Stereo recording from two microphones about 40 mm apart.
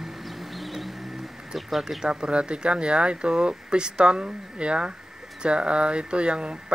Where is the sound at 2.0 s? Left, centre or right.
Right.